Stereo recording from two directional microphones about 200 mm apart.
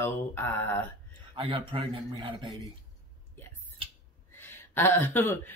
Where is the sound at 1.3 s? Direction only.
25° right (ahead or behind).